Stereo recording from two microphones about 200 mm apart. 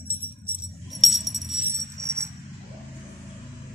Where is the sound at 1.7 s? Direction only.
15° right (ahead or behind).